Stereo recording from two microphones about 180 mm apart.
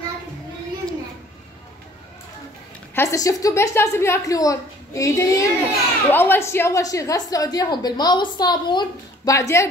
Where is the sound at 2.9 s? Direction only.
20° left (ahead or behind).